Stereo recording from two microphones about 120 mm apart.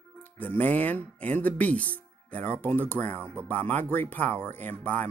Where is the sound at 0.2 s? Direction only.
15° left (ahead or behind).